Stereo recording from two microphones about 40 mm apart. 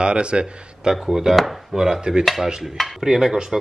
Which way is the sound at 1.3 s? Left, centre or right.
Centre.